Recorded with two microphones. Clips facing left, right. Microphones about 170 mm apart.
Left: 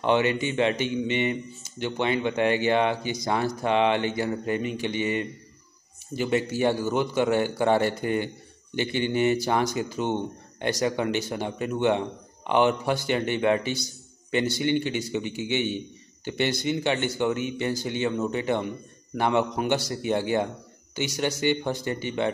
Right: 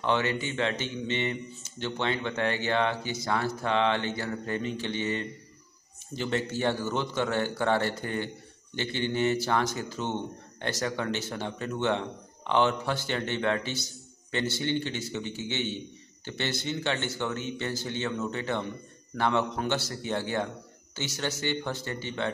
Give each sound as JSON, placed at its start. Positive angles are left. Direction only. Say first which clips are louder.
{"t": 0.0, "sound": "a man's voice", "louder": "left 5 dB", "side_deg": 15}